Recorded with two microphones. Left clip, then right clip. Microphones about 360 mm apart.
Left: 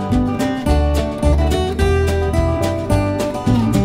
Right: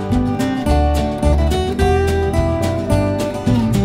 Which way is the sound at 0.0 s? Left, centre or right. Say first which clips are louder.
Even; centre.